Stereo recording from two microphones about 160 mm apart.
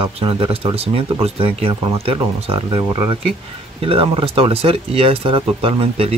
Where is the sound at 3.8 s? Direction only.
35° right (ahead or behind).